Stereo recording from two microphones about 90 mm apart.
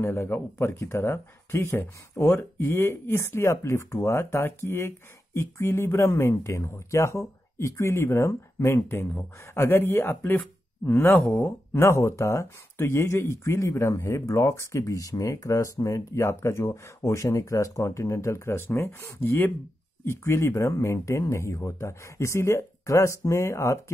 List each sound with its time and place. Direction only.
0.0 s speech: 30° left (ahead or behind)